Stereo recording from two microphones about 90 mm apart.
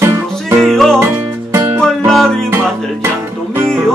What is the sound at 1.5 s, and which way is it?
Music, 30° right (ahead or behind).